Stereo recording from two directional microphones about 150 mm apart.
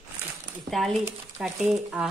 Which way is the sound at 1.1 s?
15° right (ahead or behind).